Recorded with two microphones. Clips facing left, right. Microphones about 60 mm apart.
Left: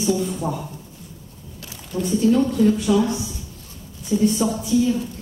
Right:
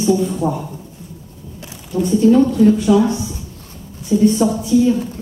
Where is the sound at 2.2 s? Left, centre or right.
Right.